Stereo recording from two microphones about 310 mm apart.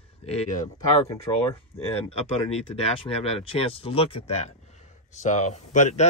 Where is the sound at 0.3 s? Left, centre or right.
Left.